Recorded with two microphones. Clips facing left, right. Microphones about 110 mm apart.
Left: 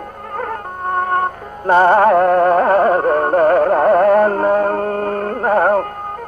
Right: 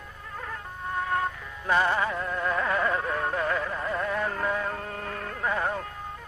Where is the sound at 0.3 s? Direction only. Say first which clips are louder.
Left 13 dB; 55° left (ahead or behind).